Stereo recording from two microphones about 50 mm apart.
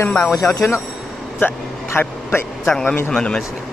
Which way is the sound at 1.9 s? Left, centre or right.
Left.